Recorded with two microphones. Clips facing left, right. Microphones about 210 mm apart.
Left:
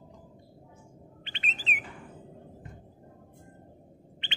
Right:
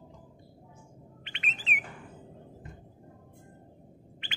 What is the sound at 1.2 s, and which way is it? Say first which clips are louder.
Bird: left 1 dB; 30° left (ahead or behind).